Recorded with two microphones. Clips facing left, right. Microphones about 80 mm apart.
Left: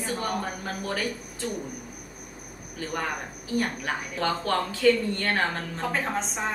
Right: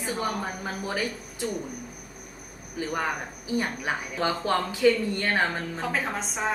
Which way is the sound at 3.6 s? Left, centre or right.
Centre.